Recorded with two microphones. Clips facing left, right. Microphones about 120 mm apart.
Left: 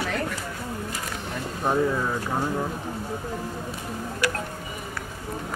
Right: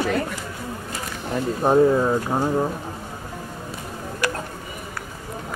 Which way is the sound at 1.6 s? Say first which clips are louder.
Right 7 dB; 35° right (ahead or behind).